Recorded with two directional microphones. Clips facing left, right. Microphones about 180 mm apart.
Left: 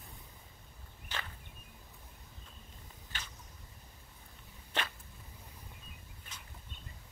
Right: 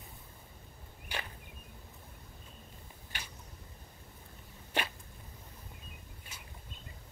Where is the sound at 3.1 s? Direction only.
15° right (ahead or behind).